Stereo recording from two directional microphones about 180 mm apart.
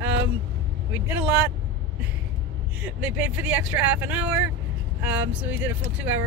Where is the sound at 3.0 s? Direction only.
10° right (ahead or behind).